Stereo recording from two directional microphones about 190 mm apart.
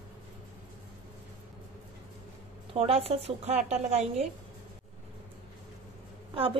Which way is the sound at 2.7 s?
30° right (ahead or behind).